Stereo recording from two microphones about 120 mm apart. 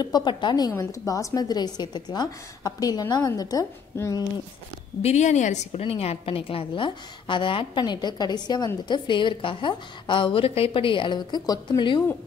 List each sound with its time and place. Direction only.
0.0 s a woman's voice: 35° left (ahead or behind)
5.0 s a woman's voice: 75° left (ahead or behind); by 12.0 s 40° left (ahead or behind)